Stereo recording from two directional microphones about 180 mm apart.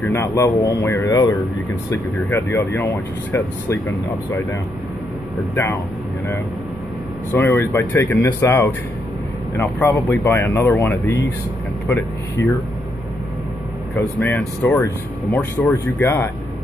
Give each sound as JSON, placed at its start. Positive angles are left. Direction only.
{"t": 0.0, "sound": "speech", "side_deg": 15}
{"t": 7.3, "sound": "speech", "side_deg": 15}
{"t": 13.9, "sound": "speech", "side_deg": 10}